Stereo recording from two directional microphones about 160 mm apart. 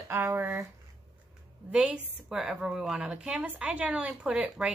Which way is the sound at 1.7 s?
5° right (ahead or behind).